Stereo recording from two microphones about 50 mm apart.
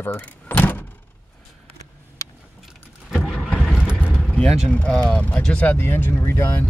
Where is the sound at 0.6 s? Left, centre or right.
Left.